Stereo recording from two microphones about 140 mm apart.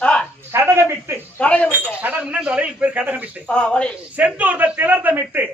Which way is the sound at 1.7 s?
10° right (ahead or behind).